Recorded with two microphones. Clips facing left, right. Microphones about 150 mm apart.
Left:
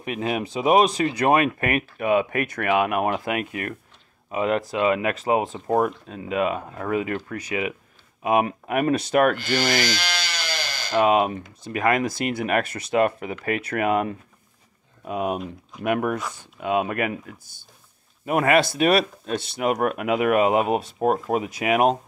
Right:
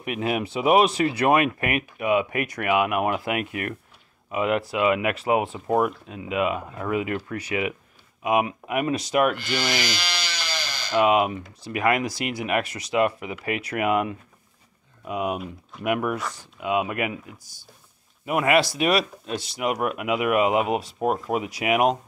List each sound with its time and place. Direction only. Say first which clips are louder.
0.0 s speech: even; 30° left (ahead or behind)
0.8 s speech: even; 40° left (ahead or behind)
8.5 s speech: left 3 dB; 45° left (ahead or behind)
10.9 s speech: left 1 dB; 35° left (ahead or behind)
15.3 s speech: left 2 dB; 5° right (ahead or behind)
15.8 s speech: left 1 dB; 35° left (ahead or behind)
18.2 s speech: left 1 dB; 40° left (ahead or behind)
18.7 s speech: left 3 dB; 55° left (ahead or behind)
19.6 s speech: left 3 dB; 40° left (ahead or behind)